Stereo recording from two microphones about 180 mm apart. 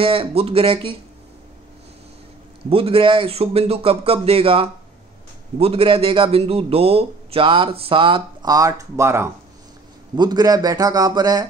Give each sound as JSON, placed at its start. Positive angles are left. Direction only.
{"t": 0.0, "sound": "speech", "side_deg": -30}
{"t": 2.7, "sound": "a man's voice", "side_deg": -30}